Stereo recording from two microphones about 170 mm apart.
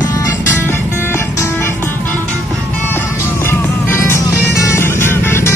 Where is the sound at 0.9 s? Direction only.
15° left (ahead or behind).